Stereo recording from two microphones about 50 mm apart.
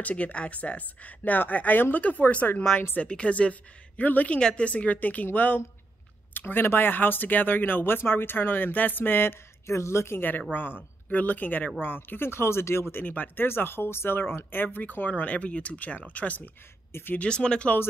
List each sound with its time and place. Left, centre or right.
0.0 s a woman's voice: left
4.4 s speech: centre
4.6 s speech: left
9.7 s a woman's voice: left
10.5 s speech: left
12.9 s speech: left
13.5 s speech: left
16.9 s speech: left
17.2 s speech: centre